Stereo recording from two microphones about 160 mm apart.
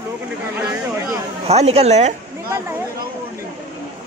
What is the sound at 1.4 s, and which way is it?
Speech, 40° right (ahead or behind).